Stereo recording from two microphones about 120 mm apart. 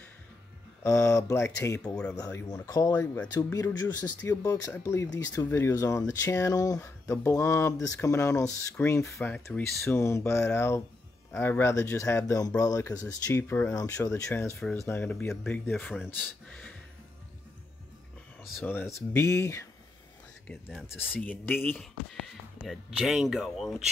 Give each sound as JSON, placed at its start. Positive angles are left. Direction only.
{"t": 0.8, "sound": "speech", "side_deg": 25}
{"t": 3.2, "sound": "speech", "side_deg": 20}
{"t": 9.2, "sound": "speech", "side_deg": 10}
{"t": 9.8, "sound": "speech", "side_deg": 20}
{"t": 18.6, "sound": "speech", "side_deg": 15}
{"t": 21.0, "sound": "speech", "side_deg": 15}
{"t": 22.1, "sound": "speech", "side_deg": 0}